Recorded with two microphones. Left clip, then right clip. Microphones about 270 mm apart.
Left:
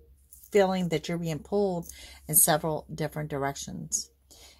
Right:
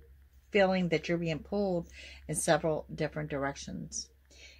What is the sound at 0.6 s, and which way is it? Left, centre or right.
Speech, left.